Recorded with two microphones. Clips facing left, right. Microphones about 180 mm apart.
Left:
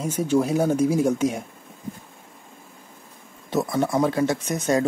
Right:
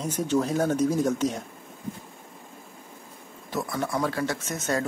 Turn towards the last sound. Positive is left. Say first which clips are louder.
# left 6 dB
turn(degrees=15)  # may be behind; listen again after turning